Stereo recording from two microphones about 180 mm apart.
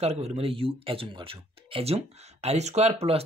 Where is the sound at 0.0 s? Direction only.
35° right (ahead or behind).